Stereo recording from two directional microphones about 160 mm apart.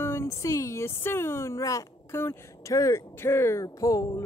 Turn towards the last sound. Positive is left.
turn(degrees=25)  # may be behind; listen again after turning